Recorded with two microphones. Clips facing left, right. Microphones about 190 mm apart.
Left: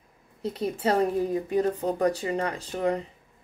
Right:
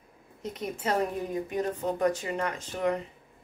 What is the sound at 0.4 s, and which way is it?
Speech, 35° left (ahead or behind).